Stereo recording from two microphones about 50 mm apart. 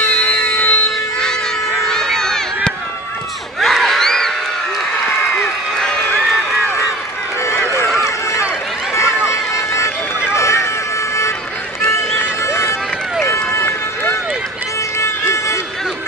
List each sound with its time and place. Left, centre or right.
0.0 s music: left
1.9 s run: centre
3.5 s crowd: centre
9.0 s run: centre
9.5 s run: left
12.4 s run: left
15.0 s music: left